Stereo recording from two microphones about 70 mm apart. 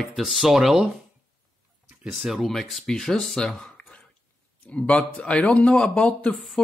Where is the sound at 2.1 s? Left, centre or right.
Centre.